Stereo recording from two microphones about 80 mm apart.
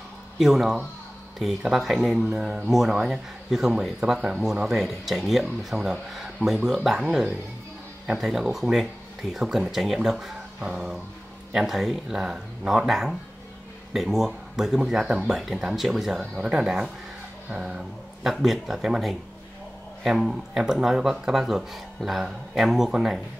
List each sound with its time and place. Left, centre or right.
0.4 s speech: centre